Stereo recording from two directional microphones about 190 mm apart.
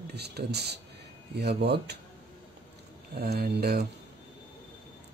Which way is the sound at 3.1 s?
55° right (ahead or behind).